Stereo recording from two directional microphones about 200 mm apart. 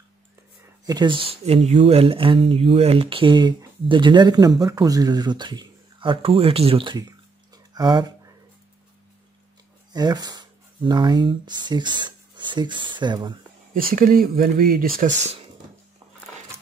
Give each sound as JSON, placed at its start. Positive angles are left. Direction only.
{"t": 0.8, "sound": "speech", "side_deg": -20}
{"t": 7.5, "sound": "a sound", "side_deg": -20}
{"t": 9.9, "sound": "speech", "side_deg": -20}
{"t": 13.7, "sound": "speech", "side_deg": -45}